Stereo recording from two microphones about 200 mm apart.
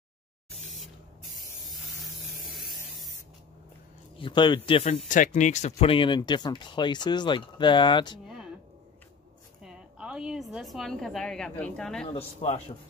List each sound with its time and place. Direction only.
1.8 s spray: centre (ahead or behind)
4.2 s speech: 25° left (ahead or behind)
5.0 s speech: 40° left (ahead or behind); by 8.2 s 25° left (ahead or behind)
9.6 s a woman's voice: 5° right (ahead or behind)
12.4 s a man's voice: 35° left (ahead or behind)